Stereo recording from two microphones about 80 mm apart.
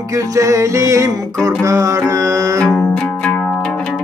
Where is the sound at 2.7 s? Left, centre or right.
Centre.